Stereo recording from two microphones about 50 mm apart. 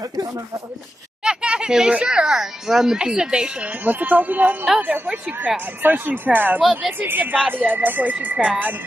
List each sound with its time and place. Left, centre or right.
1.2 s a child's voice: centre
3.8 s speech: right
5.8 s speech: right
6.6 s a woman's voice: centre
7.0 s speech: right